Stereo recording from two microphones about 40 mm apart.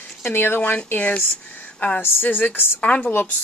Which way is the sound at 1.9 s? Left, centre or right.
Left.